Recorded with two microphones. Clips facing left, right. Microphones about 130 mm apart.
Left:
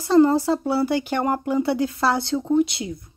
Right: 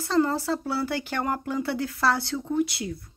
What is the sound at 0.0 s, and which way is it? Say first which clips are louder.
Speech: left 8 dB; 15° left (ahead or behind).